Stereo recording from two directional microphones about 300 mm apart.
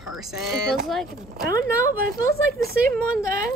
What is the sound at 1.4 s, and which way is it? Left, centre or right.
Speech, right.